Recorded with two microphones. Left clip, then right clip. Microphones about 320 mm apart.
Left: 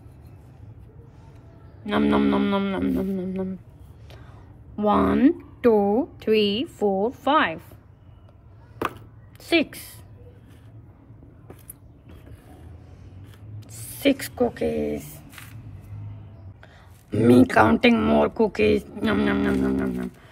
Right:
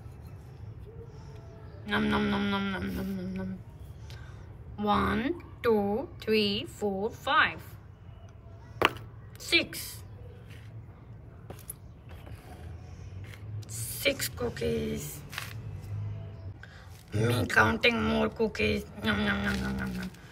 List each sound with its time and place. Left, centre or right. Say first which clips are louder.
1.9 s speech: left 7 dB; centre
4.7 s speech: left 7 dB; centre
9.4 s a woman's voice: left 5 dB; centre
13.7 s speech: left 7 dB; centre
16.6 s speech: left 1 dB; centre